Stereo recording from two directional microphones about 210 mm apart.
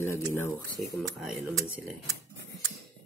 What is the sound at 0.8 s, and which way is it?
Speech, centre (ahead or behind).